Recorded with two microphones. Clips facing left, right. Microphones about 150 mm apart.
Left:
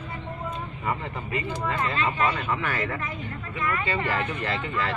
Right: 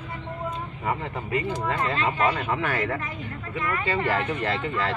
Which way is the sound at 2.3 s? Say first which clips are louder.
Right 2 dB; 55° right (ahead or behind).